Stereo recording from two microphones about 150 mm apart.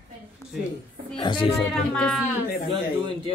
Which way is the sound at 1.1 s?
35° left (ahead or behind).